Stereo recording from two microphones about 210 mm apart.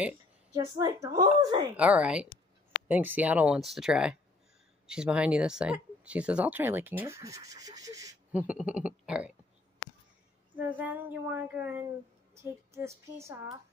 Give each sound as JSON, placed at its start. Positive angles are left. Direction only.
{"t": 0.7, "sound": "speech", "side_deg": -15}
{"t": 1.8, "sound": "speech", "side_deg": -5}
{"t": 10.6, "sound": "speech", "side_deg": -10}